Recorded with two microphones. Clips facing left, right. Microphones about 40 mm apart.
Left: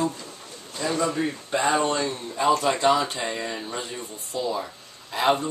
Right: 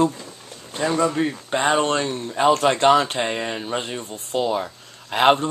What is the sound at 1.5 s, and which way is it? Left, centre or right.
Speech, right.